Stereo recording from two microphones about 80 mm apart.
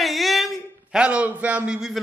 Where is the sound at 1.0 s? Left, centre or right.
Centre.